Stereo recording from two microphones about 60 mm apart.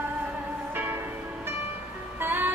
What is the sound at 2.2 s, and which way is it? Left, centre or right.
Music, right.